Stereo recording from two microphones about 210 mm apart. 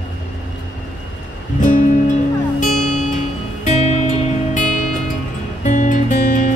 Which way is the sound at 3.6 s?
30° left (ahead or behind).